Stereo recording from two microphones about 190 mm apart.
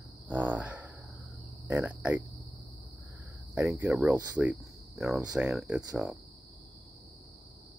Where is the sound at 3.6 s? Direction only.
15° right (ahead or behind).